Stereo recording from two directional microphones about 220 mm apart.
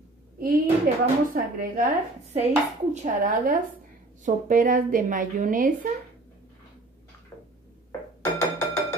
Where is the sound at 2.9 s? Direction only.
35° right (ahead or behind).